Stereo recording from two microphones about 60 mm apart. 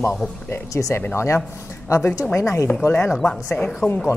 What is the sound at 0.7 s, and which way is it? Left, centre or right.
Speech, left.